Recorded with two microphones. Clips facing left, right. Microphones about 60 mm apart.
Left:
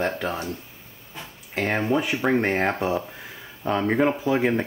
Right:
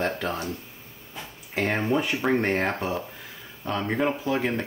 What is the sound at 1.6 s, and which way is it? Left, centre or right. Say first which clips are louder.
Speech: left 1 dB; centre.